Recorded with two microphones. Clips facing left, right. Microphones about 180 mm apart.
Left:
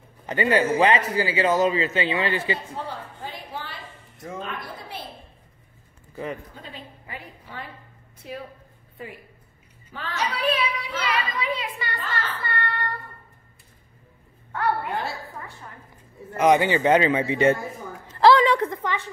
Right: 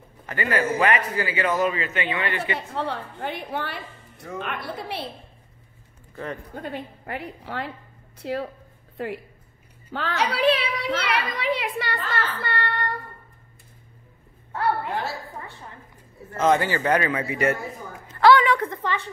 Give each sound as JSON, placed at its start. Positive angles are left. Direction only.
{"t": 0.3, "sound": "a man's voice", "side_deg": 25}
{"t": 2.7, "sound": "a woman's voice", "side_deg": -70}
{"t": 6.5, "sound": "a woman's voice", "side_deg": -55}
{"t": 8.2, "sound": "speech", "side_deg": -90}
{"t": 8.9, "sound": "a woman's voice", "side_deg": -75}
{"t": 14.9, "sound": "a woman's voice", "side_deg": 0}
{"t": 16.3, "sound": "a man's voice", "side_deg": 15}
{"t": 18.1, "sound": "a sound", "side_deg": 30}
{"t": 18.8, "sound": "speech", "side_deg": 10}